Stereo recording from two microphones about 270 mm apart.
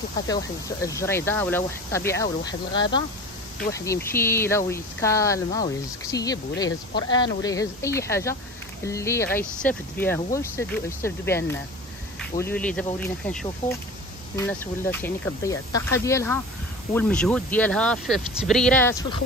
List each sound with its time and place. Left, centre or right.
0.8 s speech: centre